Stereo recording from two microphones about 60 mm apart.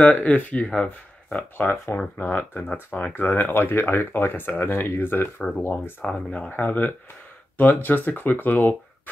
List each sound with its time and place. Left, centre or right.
0.0 s speech: left
6.0 s speech: left